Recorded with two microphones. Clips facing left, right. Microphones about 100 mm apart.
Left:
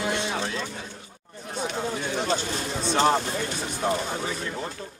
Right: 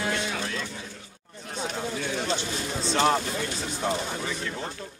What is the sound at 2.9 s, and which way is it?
Speech, 30° left (ahead or behind).